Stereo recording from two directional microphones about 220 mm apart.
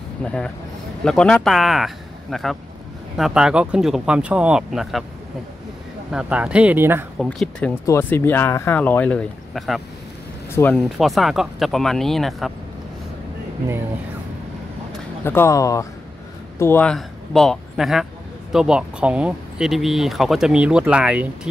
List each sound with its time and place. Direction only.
0.2 s speech: 5° left (ahead or behind)
3.2 s speech: centre (ahead or behind)
6.1 s speech: 5° right (ahead or behind)
7.2 s speech: 5° left (ahead or behind)
15.2 s speech: 10° left (ahead or behind); by 21.3 s 5° right (ahead or behind)